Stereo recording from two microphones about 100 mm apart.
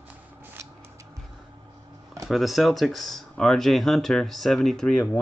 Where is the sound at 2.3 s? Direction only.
Centre (ahead or behind).